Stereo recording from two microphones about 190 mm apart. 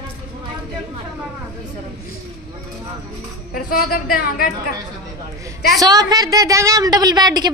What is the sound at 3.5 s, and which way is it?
Speech, 50° left (ahead or behind).